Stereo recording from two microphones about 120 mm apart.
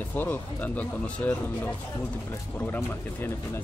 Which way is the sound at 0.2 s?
15° left (ahead or behind).